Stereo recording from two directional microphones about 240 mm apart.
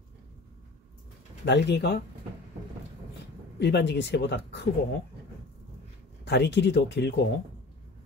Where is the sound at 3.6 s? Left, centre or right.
Left.